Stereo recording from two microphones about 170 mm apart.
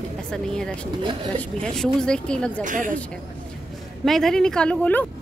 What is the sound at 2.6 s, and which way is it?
Speech, 50° right (ahead or behind).